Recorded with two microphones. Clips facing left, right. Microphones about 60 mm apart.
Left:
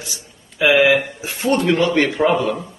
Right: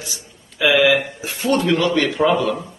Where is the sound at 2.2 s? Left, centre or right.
Centre.